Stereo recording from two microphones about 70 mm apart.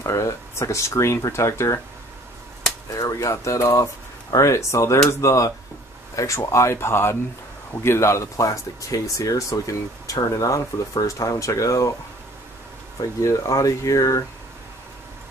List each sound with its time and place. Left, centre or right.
0.0 s speech: left
2.9 s speech: left
13.2 s speech: left